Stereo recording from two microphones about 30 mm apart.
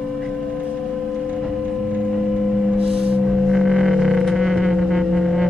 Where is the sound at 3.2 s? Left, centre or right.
Centre.